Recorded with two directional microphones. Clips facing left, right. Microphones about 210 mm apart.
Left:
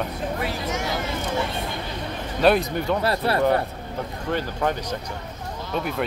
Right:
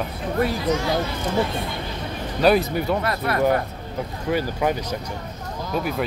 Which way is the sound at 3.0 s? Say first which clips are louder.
Left 2 dB; 30° left (ahead or behind).